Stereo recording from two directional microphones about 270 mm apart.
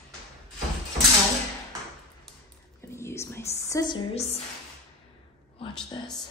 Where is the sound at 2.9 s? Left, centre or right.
Centre.